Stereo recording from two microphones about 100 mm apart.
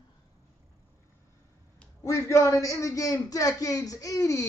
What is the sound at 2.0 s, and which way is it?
A man's voice, 30° left (ahead or behind).